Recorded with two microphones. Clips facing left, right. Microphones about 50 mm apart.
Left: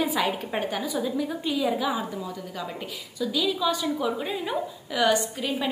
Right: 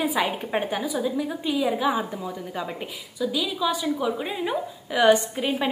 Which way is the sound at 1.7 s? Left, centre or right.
Centre.